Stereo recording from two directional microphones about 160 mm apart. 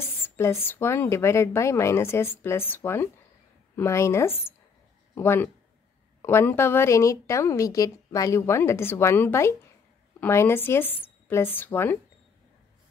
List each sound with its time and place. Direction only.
0.0 s a woman's voice: 15° left (ahead or behind)